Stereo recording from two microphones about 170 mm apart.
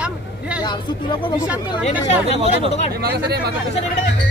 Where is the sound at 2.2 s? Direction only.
40° right (ahead or behind).